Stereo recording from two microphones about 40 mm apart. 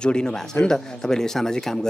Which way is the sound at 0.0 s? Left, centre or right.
Left.